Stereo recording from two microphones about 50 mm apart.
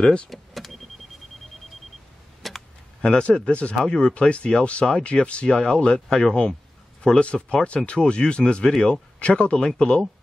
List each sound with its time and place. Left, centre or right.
0.0 s speech: left
0.3 s vehicle: centre
2.4 s a sound: centre
3.0 s speech: left
5.9 s speech: centre
7.6 s speech: left